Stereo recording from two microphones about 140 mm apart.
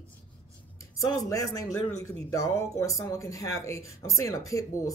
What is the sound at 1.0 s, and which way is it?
Speech, 25° left (ahead or behind).